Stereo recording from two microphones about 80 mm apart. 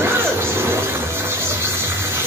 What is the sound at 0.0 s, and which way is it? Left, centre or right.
Music, right.